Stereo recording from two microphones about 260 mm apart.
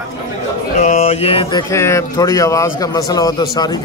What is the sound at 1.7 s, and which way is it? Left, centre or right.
A man's voice, centre.